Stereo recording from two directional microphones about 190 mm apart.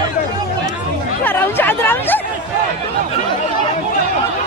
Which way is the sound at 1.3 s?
10° left (ahead or behind).